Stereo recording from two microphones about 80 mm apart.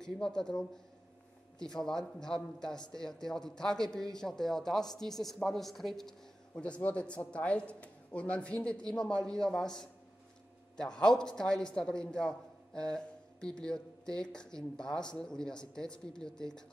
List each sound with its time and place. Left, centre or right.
0.0 s a man's voice: centre
6.5 s a man's voice: centre